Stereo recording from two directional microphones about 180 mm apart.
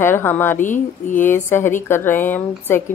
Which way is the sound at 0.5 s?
45° left (ahead or behind).